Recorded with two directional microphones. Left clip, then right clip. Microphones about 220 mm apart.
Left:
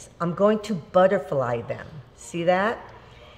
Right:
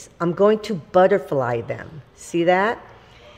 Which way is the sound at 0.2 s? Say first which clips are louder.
Right 4 dB; 40° right (ahead or behind).